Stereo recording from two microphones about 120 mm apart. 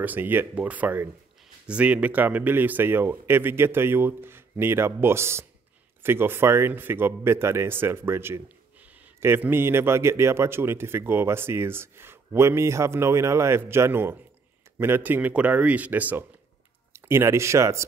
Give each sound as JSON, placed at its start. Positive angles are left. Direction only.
{"t": 0.0, "sound": "a man's voice", "side_deg": -15}